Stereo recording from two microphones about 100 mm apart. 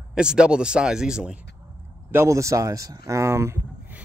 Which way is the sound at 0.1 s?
10° right (ahead or behind).